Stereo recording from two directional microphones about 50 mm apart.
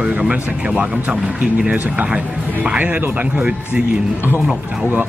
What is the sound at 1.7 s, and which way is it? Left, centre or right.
Speech, right.